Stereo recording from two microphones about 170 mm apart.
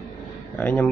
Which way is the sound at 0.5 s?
10° left (ahead or behind).